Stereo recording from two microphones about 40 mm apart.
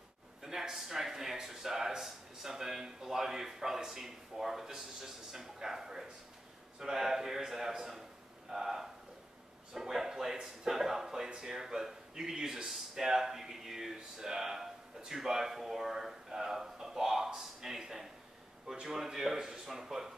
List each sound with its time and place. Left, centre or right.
0.4 s speech: centre
8.5 s a sound: centre
9.8 s a man's voice: centre